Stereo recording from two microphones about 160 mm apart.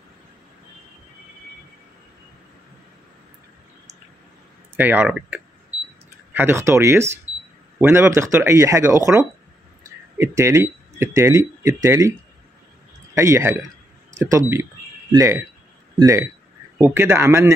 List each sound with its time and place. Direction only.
4.7 s speech: 10° right (ahead or behind)
13.1 s speech: 20° right (ahead or behind)